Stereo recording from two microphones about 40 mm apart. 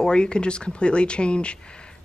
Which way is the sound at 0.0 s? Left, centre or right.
Left.